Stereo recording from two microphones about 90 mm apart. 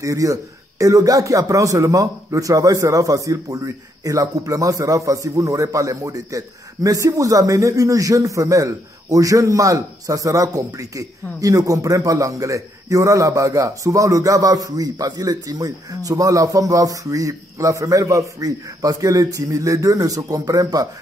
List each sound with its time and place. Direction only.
0.0 s speech: 35° right (ahead or behind)